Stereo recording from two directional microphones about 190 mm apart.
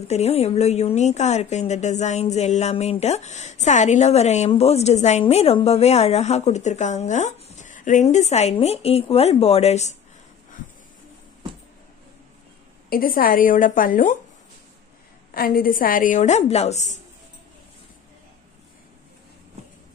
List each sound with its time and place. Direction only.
0.1 s a woman's voice: 35° left (ahead or behind)
12.9 s a woman's voice: 50° left (ahead or behind)
15.3 s a woman's voice: 50° left (ahead or behind)